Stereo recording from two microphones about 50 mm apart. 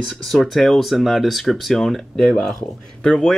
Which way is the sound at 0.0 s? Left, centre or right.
Centre.